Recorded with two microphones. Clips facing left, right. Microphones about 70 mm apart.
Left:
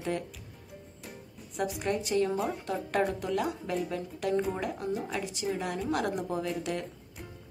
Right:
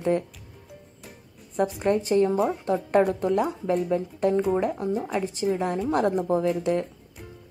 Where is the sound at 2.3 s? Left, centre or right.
Centre.